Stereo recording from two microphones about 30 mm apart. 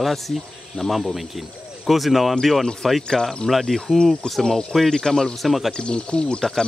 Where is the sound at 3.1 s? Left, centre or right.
Left.